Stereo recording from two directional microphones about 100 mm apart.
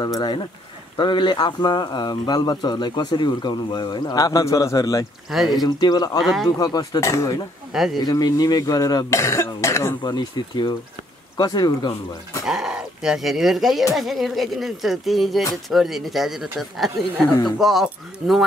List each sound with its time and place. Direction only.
0.0 s a man's voice: 45° left (ahead or behind)
6.2 s speech: centre (ahead or behind)
6.6 s speech: 40° left (ahead or behind)
7.7 s speech: 5° right (ahead or behind)
8.0 s speech: 40° left (ahead or behind)
9.2 s speech: 25° left (ahead or behind)
10.0 s a man's voice: 45° left (ahead or behind)
12.4 s speech: 5° right (ahead or behind)